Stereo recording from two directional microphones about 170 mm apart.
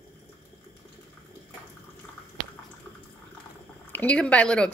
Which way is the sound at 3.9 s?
10° left (ahead or behind).